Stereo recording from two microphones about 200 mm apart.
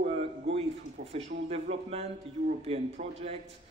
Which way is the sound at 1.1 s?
30° right (ahead or behind).